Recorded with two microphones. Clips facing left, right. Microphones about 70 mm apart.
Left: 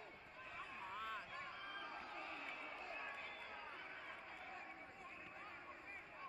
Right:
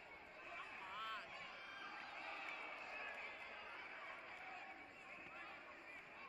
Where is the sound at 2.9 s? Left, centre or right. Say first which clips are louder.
Left 1 dB; centre.